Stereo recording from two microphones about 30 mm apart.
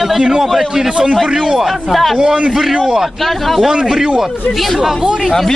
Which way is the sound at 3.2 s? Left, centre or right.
Centre.